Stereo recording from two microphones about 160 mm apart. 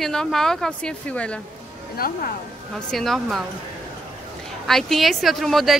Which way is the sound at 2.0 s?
70° left (ahead or behind).